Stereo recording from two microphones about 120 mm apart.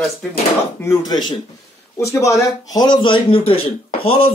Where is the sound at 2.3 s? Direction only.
35° left (ahead or behind).